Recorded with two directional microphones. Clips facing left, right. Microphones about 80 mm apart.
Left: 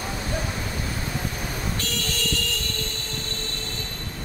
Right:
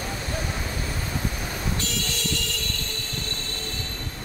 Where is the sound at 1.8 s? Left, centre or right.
Left.